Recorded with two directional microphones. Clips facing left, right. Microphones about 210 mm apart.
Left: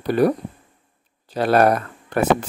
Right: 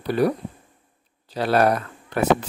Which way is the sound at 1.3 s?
50° left (ahead or behind).